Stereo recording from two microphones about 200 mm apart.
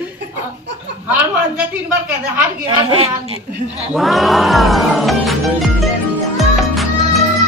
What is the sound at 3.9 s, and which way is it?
Music, centre (ahead or behind).